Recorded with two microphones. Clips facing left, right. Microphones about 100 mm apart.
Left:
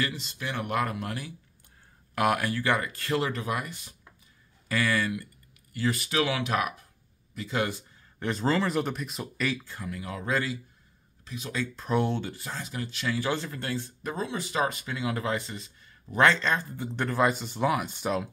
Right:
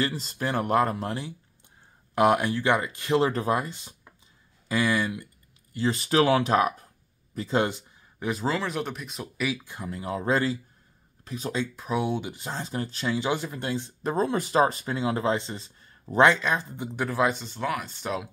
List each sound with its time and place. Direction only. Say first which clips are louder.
0.0 s speech: right 4 dB; 40° right (ahead or behind); by 3.2 s 20° right (ahead or behind)
3.2 s speech: right 7 dB; 30° right (ahead or behind)
8.2 s speech: left 1 dB; 5° right (ahead or behind)
9.7 s speech: right 4 dB; 25° right (ahead or behind)
11.2 s speech: right 6 dB; 40° right (ahead or behind)
11.7 s speech: left 4 dB; 5° right (ahead or behind); by 13.1 s 35° right (ahead or behind)
13.1 s speech: right 2 dB; 20° right (ahead or behind)
14.1 s speech: right 8 dB; 45° right (ahead or behind)
14.6 s speech: right 5 dB; 35° right (ahead or behind)
16.3 s speech: right 1 dB; 15° right (ahead or behind)
16.9 s speech: even; 5° right (ahead or behind); by 18.1 s 15° left (ahead or behind)